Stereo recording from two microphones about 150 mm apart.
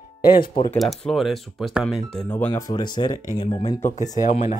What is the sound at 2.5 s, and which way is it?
Speech, 25° left (ahead or behind).